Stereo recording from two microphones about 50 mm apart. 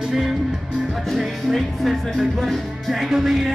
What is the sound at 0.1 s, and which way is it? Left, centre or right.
Music, centre.